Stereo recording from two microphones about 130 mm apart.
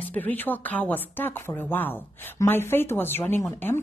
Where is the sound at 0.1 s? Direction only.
15° left (ahead or behind).